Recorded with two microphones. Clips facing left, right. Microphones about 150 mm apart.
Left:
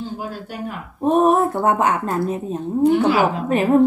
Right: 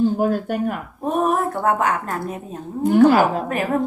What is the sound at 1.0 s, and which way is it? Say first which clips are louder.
Speech: left 5 dB; 30° left (ahead or behind).